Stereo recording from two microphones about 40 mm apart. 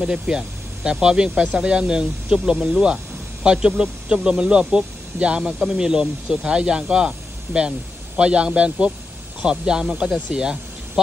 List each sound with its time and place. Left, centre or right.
0.0 s speech: centre